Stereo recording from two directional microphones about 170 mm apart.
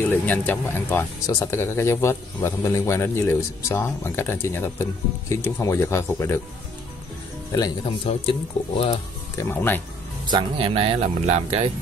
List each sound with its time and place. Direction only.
0.1 s speech: 10° left (ahead or behind)
7.5 s speech: 25° left (ahead or behind)
9.4 s speech: 10° left (ahead or behind)
10.2 s speech: 30° right (ahead or behind)